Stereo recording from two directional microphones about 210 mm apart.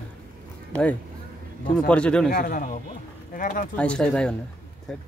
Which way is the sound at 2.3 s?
40° left (ahead or behind).